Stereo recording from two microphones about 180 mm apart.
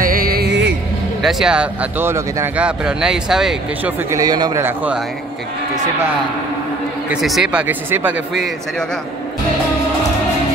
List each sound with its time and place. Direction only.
0.0 s music: 55° right (ahead or behind); by 0.7 s 75° right (ahead or behind)
1.2 s speech: 5° right (ahead or behind)
4.1 s a man's voice: 20° right (ahead or behind)
4.6 s speech: 10° right (ahead or behind)
7.1 s speech: centre (ahead or behind)